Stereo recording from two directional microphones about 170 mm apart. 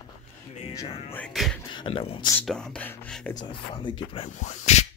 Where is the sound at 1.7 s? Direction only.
30° left (ahead or behind).